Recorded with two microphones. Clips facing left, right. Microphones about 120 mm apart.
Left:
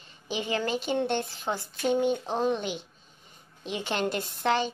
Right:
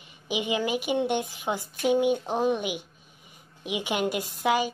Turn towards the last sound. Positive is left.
turn(degrees=-10)  # may be behind; listen again after turning